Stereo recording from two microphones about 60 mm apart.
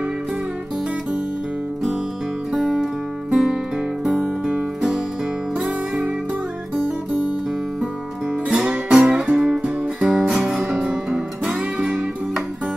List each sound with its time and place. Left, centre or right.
2.5 s music: centre
8.5 s music: centre
10.8 s music: centre